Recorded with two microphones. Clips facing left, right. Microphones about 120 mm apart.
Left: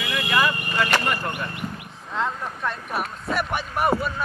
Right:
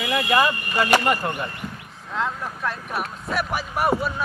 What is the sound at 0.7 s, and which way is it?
Speech, 15° right (ahead or behind).